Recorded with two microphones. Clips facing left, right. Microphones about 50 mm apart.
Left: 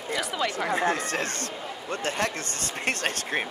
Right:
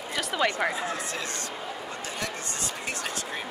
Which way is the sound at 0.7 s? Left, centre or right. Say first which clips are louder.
Left 6 dB; left.